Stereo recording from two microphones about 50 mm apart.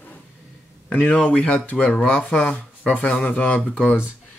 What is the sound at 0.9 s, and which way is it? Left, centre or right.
Speech, left.